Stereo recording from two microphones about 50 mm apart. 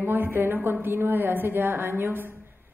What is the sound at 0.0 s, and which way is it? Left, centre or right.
A woman's voice, right.